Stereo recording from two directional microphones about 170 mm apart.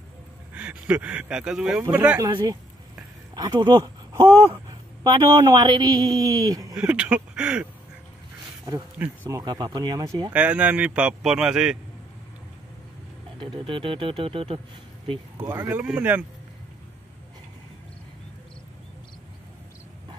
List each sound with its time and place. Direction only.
0.6 s speech: 5° right (ahead or behind)
2.1 s speech: 20° right (ahead or behind)
6.7 s speech: 5° right (ahead or behind)
8.9 s speech: 10° right (ahead or behind)
9.4 s speech: 25° right (ahead or behind)
10.3 s speech: 10° right (ahead or behind)
13.4 s speech: 30° right (ahead or behind)
15.3 s speech: 15° right (ahead or behind)